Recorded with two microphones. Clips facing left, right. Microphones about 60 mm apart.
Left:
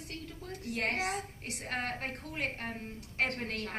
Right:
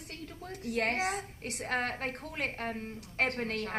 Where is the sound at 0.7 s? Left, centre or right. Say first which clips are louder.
Right 3 dB; right.